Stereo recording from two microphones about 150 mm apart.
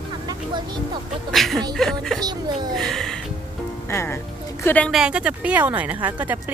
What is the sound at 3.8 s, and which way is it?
Speech, 15° left (ahead or behind).